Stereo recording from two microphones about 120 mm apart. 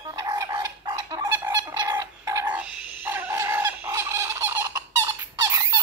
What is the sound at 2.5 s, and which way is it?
Fowl, 15° right (ahead or behind).